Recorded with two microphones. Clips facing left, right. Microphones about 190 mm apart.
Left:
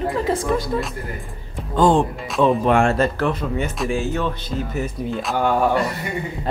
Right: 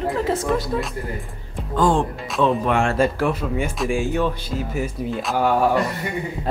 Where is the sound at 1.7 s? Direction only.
20° left (ahead or behind).